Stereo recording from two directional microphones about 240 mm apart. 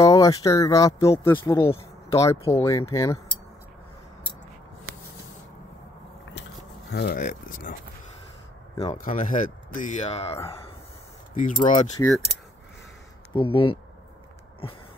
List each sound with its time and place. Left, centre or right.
0.0 s speech: centre
6.9 s speech: left
8.7 s speech: centre
9.0 s speech: left
13.3 s speech: left